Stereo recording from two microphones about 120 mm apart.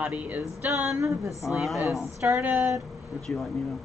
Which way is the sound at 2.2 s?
25° right (ahead or behind).